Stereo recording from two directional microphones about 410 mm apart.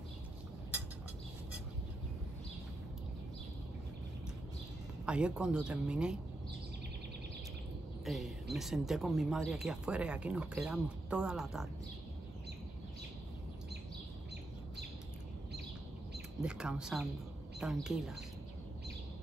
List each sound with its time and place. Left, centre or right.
5.0 s speech: centre
8.0 s a sound: centre
8.5 s speech: centre
16.4 s speech: centre